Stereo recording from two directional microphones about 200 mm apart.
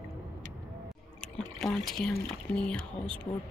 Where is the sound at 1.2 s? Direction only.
Centre (ahead or behind).